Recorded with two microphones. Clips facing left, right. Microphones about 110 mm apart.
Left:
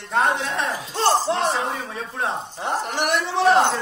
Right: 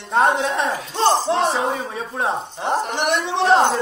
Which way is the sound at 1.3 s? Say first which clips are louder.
Right 3 dB; centre (ahead or behind).